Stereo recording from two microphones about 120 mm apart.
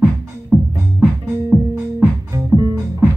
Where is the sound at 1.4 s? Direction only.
20° right (ahead or behind).